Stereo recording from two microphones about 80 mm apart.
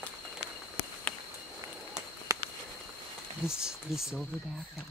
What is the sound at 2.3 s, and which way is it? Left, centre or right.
Walk, right.